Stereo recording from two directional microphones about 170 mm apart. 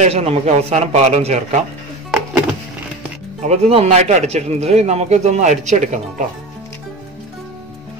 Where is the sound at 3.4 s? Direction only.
35° right (ahead or behind).